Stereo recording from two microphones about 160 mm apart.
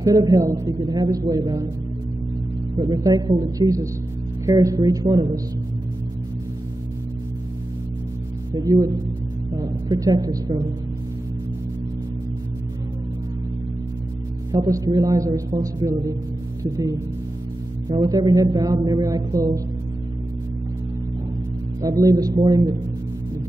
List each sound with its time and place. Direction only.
0.0 s speech: 25° right (ahead or behind)
2.8 s speech: 25° right (ahead or behind)
8.5 s speech: 20° right (ahead or behind)
14.5 s speech: 25° right (ahead or behind)
21.8 s speech: 20° right (ahead or behind)